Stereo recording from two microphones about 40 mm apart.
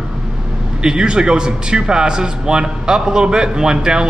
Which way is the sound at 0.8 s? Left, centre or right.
Centre.